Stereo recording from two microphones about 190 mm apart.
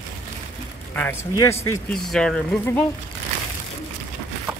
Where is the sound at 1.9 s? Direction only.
5° left (ahead or behind).